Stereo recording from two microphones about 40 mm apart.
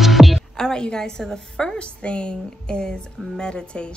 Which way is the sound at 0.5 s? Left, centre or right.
Centre.